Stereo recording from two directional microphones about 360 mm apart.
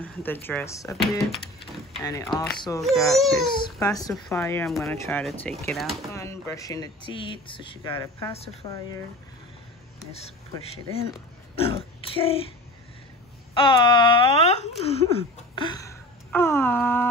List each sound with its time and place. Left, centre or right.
0.0 s speech: centre
10.1 s a child's voice: centre
13.6 s speech: centre